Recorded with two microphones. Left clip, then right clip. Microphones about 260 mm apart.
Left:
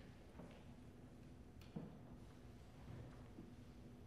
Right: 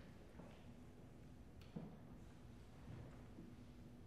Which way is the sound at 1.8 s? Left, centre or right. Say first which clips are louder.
Left 1 dB; right.